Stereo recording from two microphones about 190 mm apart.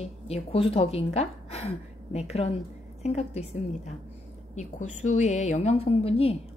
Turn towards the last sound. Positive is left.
turn(degrees=30)  # may be behind; listen again after turning